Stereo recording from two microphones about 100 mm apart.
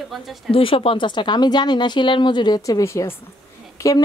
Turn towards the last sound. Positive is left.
turn(degrees=30)  # may be behind; listen again after turning